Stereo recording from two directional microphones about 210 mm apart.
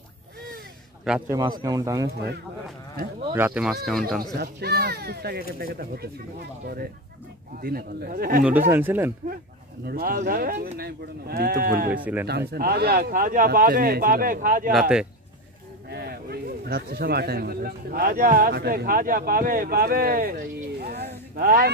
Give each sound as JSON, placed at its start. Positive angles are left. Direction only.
{"t": 1.0, "sound": "a man's voice", "side_deg": -5}
{"t": 1.3, "sound": "a man's voice", "side_deg": -15}
{"t": 3.3, "sound": "speech", "side_deg": -5}
{"t": 4.4, "sound": "speech", "side_deg": -50}
{"t": 8.5, "sound": "a man's voice", "side_deg": -10}
{"t": 9.8, "sound": "speech", "side_deg": -45}
{"t": 11.9, "sound": "a man's voice", "side_deg": -10}
{"t": 12.3, "sound": "speech", "side_deg": -50}
{"t": 14.7, "sound": "speech", "side_deg": -5}
{"t": 15.9, "sound": "speech", "side_deg": -50}